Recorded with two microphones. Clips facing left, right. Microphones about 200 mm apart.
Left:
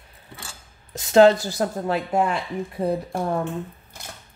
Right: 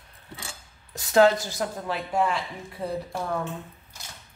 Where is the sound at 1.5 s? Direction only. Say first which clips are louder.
Left 6 dB; 45° left (ahead or behind).